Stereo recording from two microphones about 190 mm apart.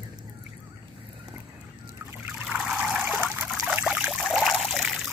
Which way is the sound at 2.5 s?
5° right (ahead or behind).